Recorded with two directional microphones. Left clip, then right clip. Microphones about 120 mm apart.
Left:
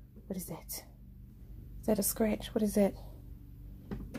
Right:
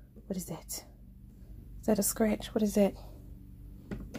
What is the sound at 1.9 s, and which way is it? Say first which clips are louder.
Speech: right 2 dB; 20° right (ahead or behind).